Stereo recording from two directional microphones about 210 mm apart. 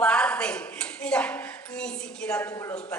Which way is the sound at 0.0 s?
5° left (ahead or behind).